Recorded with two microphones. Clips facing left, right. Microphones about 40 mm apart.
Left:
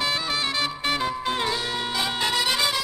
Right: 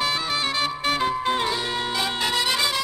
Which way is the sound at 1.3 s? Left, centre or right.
Centre.